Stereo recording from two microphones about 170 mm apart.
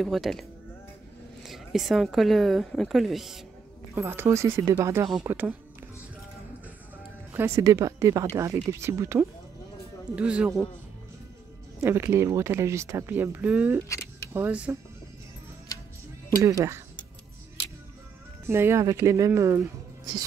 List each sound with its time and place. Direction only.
0.0 s a woman's voice: centre (ahead or behind)
3.9 s speech: 15° right (ahead or behind)
7.3 s speech: 15° right (ahead or behind)
11.8 s speech: 15° right (ahead or behind)
13.8 s camera: 15° left (ahead or behind)
14.3 s speech: 10° right (ahead or behind)
16.3 s speech: 20° right (ahead or behind)
18.5 s speech: 15° right (ahead or behind)